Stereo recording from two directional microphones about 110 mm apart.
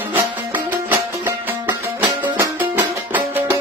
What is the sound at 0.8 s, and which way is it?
Music, 15° right (ahead or behind).